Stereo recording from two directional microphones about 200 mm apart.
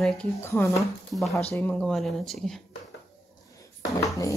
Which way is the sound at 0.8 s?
Centre (ahead or behind).